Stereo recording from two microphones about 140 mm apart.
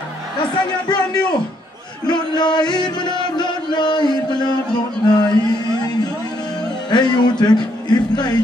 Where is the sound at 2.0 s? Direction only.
30° left (ahead or behind).